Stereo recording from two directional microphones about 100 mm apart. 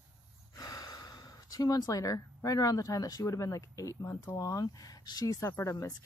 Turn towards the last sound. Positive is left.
turn(degrees=30)  # may be behind; listen again after turning